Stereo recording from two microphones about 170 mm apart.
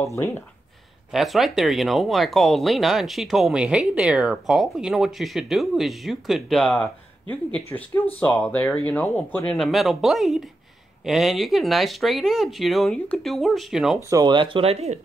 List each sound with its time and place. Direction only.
0.0 s speech: 15° left (ahead or behind)
1.1 s speech: centre (ahead or behind)
14.0 s speech: 20° right (ahead or behind); by 15.0 s 40° right (ahead or behind)